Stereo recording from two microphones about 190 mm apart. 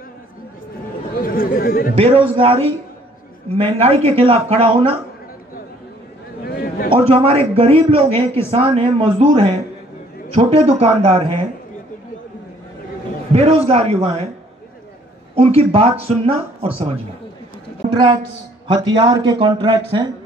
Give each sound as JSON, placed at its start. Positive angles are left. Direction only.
{"t": 1.1, "sound": "chatter", "side_deg": 50}
{"t": 2.0, "sound": "speech", "side_deg": -30}
{"t": 6.4, "sound": "a sound", "side_deg": 55}
{"t": 6.9, "sound": "speech", "side_deg": -25}
{"t": 13.3, "sound": "speech", "side_deg": -30}
{"t": 15.3, "sound": "a woman's voice", "side_deg": -30}